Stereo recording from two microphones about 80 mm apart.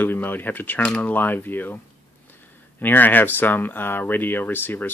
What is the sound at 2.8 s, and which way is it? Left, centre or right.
Speech, left.